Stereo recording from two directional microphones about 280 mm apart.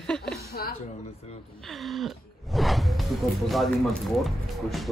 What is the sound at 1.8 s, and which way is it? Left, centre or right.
Speech, centre.